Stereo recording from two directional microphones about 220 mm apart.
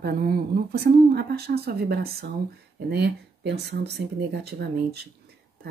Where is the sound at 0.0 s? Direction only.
45° right (ahead or behind).